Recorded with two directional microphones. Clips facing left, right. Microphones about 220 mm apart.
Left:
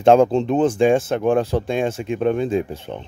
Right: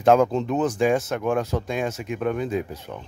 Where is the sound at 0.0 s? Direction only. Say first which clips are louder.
Left 4 dB; 30° left (ahead or behind).